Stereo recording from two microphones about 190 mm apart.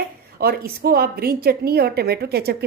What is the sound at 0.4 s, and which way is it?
A woman's voice, 55° right (ahead or behind).